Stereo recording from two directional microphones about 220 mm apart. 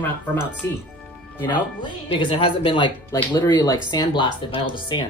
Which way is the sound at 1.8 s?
20° left (ahead or behind).